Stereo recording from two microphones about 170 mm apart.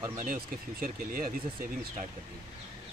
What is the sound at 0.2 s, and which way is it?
Speech, 55° right (ahead or behind).